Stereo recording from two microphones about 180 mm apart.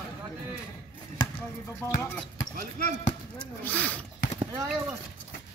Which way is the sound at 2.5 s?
50° right (ahead or behind).